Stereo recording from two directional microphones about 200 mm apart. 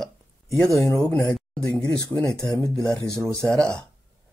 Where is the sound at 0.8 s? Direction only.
15° left (ahead or behind).